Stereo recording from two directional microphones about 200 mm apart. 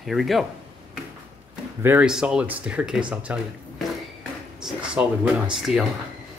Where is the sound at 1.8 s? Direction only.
5° right (ahead or behind).